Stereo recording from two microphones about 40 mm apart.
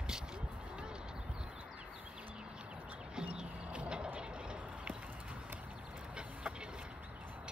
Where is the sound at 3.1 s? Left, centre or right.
Right.